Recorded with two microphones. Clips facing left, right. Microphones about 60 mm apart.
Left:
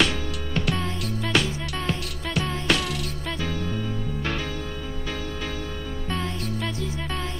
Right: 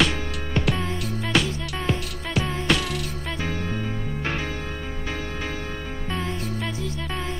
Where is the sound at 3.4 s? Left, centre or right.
Right.